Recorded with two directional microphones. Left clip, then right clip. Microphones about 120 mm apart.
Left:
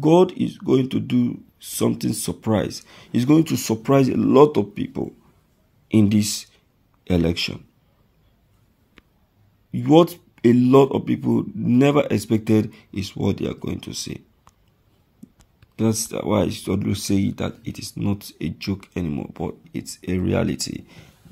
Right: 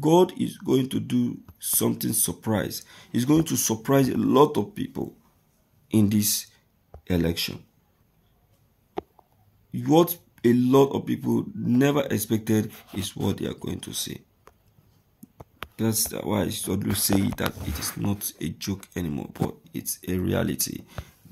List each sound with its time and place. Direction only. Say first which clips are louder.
0.0 s speech: left 4 dB; 10° left (ahead or behind)
9.7 s speech: left 5 dB; 20° left (ahead or behind)
15.7 s speech: left 5 dB; 25° left (ahead or behind)
17.0 s speech: left 1 dB; 5° left (ahead or behind)